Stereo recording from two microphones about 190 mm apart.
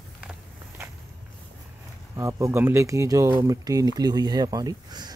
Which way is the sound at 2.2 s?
15° right (ahead or behind).